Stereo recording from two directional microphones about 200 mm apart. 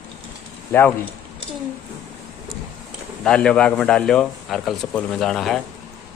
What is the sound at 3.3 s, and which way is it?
Speech, 5° left (ahead or behind).